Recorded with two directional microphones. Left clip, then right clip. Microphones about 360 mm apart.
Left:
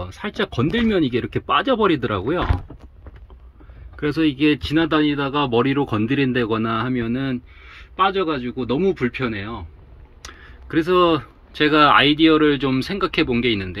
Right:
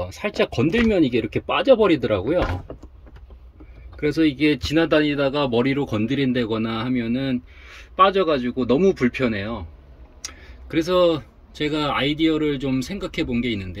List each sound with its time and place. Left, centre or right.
0.2 s speech: left
1.2 s speech: centre
4.1 s speech: centre